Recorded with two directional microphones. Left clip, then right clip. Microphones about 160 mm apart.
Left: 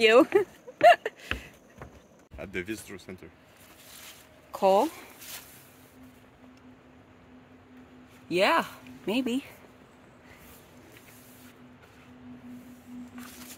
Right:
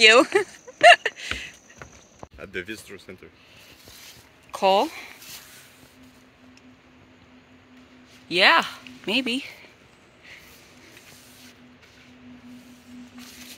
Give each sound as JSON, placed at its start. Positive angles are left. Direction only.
{"t": 0.0, "sound": "speech", "side_deg": 0}
{"t": 2.3, "sound": "speech", "side_deg": 65}
{"t": 4.5, "sound": "speech", "side_deg": 5}
{"t": 8.3, "sound": "speech", "side_deg": 5}